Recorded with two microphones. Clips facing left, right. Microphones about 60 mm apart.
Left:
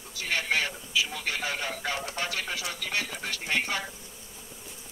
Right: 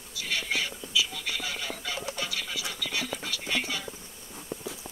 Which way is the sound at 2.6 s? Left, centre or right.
Left.